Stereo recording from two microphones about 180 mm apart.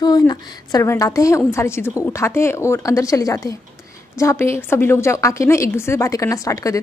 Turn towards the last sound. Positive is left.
turn(degrees=20)  # may be behind; listen again after turning